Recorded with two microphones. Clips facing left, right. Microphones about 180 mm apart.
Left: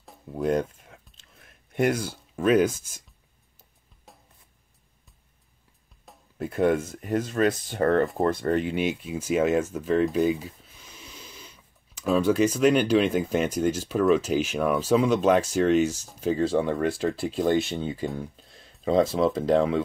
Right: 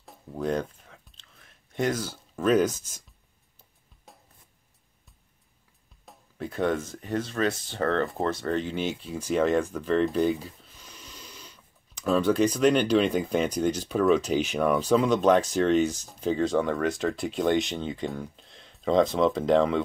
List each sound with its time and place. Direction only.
0.0 s a sound: centre (ahead or behind)
1.9 s speech: 10° left (ahead or behind)
4.1 s a sound: centre (ahead or behind)
6.1 s music: centre (ahead or behind)
6.4 s speech: 10° left (ahead or behind)
7.7 s speech: 50° left (ahead or behind)
8.6 s speech: 10° left (ahead or behind)